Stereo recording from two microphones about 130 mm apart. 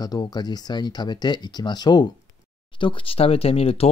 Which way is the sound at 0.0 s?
30° left (ahead or behind).